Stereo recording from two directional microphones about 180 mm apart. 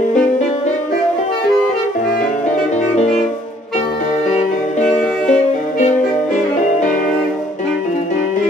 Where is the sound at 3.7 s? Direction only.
45° left (ahead or behind).